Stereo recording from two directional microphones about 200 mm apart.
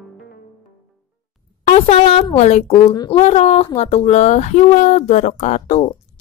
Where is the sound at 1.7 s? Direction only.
30° left (ahead or behind).